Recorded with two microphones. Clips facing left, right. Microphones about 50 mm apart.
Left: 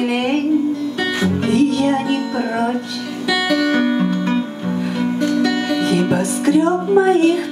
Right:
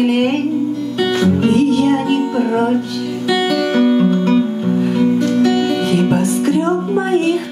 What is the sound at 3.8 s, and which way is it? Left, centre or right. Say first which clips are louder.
Music: right 5 dB; centre.